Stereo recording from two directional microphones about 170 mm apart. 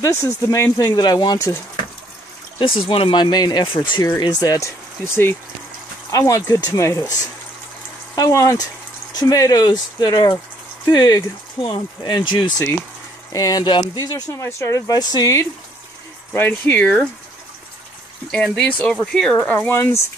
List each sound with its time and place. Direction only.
0.0 s speech: 20° left (ahead or behind)
2.6 s speech: 30° left (ahead or behind)
6.1 s speech: 20° left (ahead or behind)
8.2 s speech: 15° left (ahead or behind)
18.3 s speech: 5° left (ahead or behind)